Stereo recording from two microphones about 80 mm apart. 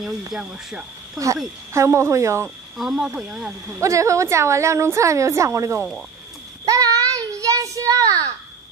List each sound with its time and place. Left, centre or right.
0.3 s speech: centre
1.7 s a woman's voice: right
2.8 s speech: centre
3.8 s a woman's voice: right
6.6 s child singing: right